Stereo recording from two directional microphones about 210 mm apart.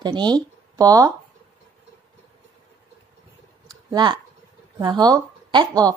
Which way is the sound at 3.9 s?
20° right (ahead or behind).